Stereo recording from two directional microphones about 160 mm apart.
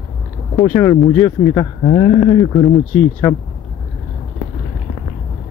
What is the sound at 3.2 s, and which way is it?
Speech, 15° left (ahead or behind).